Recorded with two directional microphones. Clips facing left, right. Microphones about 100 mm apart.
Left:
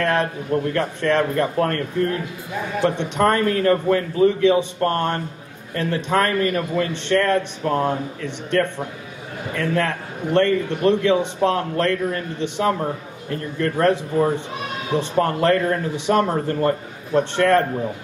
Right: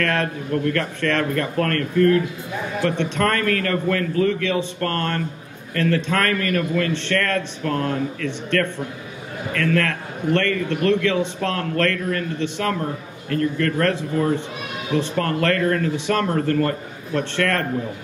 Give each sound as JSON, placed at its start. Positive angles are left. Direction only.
{"t": 0.0, "sound": "a man's voice", "side_deg": 20}